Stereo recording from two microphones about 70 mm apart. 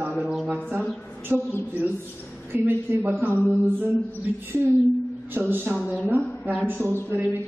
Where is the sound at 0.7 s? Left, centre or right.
Right.